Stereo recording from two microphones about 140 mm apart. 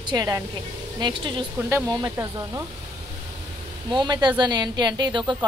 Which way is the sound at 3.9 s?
30° right (ahead or behind).